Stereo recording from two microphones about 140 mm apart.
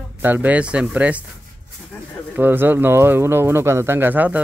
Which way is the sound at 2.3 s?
15° right (ahead or behind).